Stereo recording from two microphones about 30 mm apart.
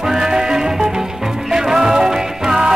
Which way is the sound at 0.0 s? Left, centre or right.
Right.